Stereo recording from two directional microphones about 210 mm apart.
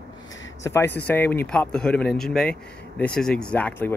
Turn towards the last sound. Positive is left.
turn(degrees=10)  # may be behind; listen again after turning